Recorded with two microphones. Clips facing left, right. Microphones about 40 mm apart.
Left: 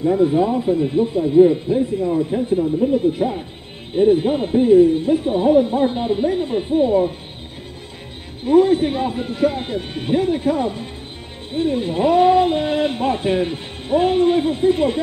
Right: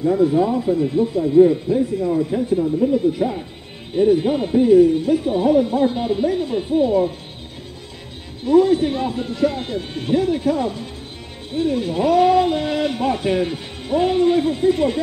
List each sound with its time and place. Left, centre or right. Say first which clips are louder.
0.0 s speech: even; left
1.3 s speech: even; centre
2.9 s speech: even; left
4.2 s speech: even; centre
8.5 s speech: left 1 dB; left